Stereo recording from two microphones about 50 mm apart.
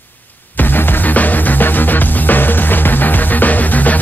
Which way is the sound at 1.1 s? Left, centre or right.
Left.